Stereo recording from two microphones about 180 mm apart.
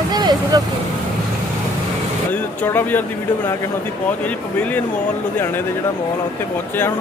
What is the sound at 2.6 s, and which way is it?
Speech, 10° left (ahead or behind).